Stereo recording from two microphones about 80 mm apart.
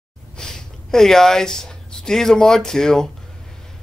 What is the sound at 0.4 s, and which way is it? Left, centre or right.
Speech, centre.